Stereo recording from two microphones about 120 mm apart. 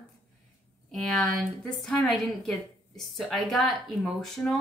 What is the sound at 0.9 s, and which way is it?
A woman's voice, centre (ahead or behind).